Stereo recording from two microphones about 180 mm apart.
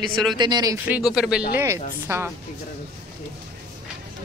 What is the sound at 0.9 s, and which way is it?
Speech, 5° right (ahead or behind).